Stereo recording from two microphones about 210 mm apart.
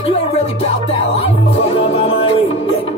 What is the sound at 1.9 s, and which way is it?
Music, 30° left (ahead or behind).